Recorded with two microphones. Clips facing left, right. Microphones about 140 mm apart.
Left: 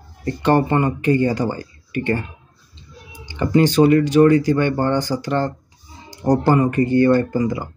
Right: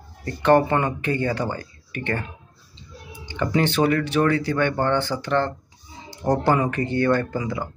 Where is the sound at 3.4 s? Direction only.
15° left (ahead or behind).